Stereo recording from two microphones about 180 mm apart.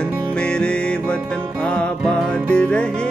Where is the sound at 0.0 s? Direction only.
5° left (ahead or behind).